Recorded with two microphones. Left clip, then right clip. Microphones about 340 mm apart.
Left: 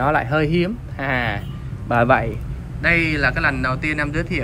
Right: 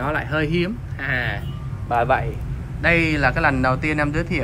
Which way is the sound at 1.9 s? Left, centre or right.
Left.